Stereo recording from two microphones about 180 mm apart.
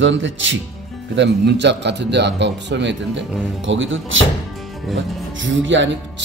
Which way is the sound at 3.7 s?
90° right.